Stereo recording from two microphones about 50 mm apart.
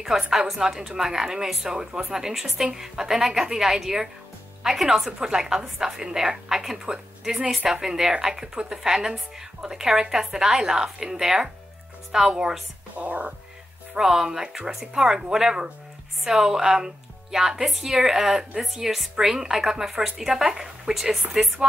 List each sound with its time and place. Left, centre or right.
0.0 s a woman's voice: centre
12.9 s speech: right
13.9 s a woman's voice: centre